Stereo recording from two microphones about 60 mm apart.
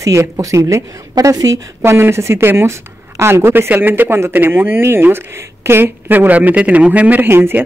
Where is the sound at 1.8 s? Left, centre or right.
Right.